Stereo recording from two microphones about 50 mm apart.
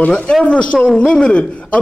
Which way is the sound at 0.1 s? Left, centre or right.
Centre.